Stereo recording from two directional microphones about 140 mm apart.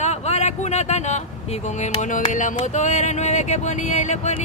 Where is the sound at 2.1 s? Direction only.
65° left (ahead or behind).